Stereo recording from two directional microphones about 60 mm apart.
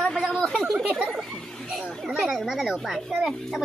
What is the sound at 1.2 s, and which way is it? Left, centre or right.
Speech, centre.